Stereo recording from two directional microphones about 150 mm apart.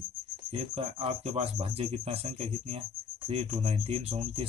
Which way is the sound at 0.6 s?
40° right (ahead or behind).